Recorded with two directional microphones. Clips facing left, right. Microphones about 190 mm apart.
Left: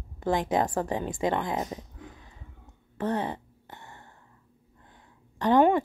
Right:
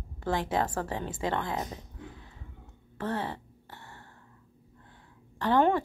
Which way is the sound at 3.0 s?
20° left (ahead or behind).